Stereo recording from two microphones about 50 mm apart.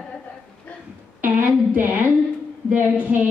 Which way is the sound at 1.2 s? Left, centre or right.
Right.